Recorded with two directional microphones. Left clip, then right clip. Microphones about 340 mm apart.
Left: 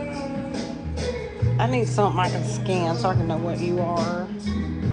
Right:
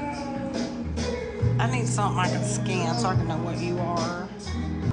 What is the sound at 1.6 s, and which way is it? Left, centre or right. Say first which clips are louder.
Speech: left 6 dB; centre.